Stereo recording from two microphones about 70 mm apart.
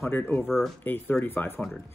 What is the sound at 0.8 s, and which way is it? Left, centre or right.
Speech, left.